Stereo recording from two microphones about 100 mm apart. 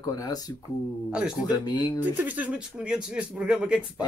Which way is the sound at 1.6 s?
45° left (ahead or behind).